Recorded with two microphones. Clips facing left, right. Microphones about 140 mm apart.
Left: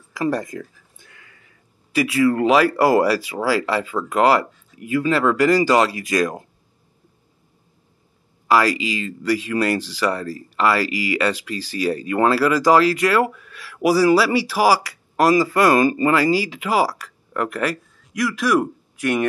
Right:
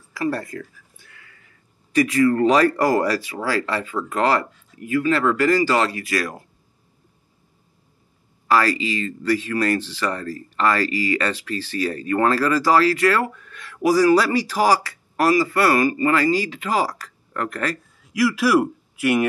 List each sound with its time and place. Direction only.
0.1 s a sound: 15° left (ahead or behind)
1.9 s speech: 10° left (ahead or behind)
8.5 s speech: 15° left (ahead or behind)
18.1 s a man's voice: 5° right (ahead or behind)